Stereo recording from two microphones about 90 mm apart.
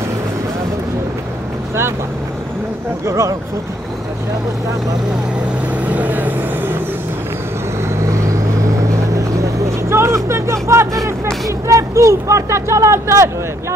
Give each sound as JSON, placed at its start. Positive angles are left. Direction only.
{"t": 3.1, "sound": "speech", "side_deg": -35}
{"t": 5.9, "sound": "vehicle", "side_deg": -20}
{"t": 8.1, "sound": "vehicle", "side_deg": -35}
{"t": 9.8, "sound": "speech", "side_deg": -30}